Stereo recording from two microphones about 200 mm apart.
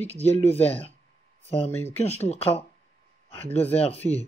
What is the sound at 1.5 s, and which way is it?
Speech, 30° left (ahead or behind).